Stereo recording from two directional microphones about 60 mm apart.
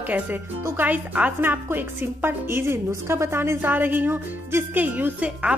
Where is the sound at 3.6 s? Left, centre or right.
Right.